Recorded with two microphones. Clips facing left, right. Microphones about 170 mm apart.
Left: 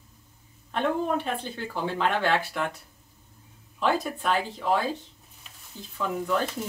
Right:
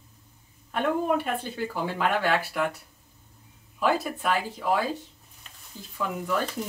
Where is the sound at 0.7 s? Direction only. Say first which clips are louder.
Right 1 dB; 5° right (ahead or behind).